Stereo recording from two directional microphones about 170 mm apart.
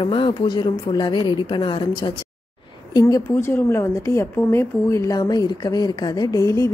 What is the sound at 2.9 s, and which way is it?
A woman's voice, 20° left (ahead or behind).